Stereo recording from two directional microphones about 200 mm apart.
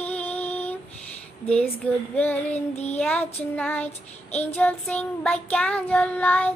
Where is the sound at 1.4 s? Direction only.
5° left (ahead or behind).